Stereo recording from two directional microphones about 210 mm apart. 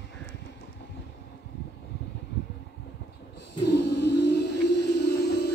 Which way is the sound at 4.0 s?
55° left (ahead or behind).